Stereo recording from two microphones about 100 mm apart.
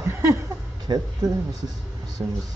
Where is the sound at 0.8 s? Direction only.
45° right (ahead or behind).